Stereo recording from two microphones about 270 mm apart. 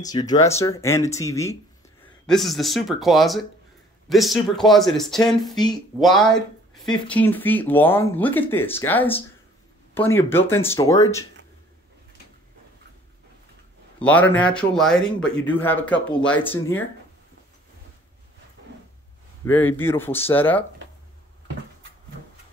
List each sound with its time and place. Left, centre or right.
0.2 s speech: centre
2.2 s a man's voice: centre
13.9 s a man's voice: centre
19.4 s speech: centre